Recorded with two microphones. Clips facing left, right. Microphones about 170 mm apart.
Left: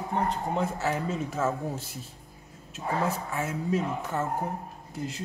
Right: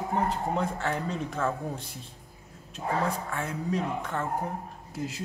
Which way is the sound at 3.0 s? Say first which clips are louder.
Left 1 dB; 5° left (ahead or behind).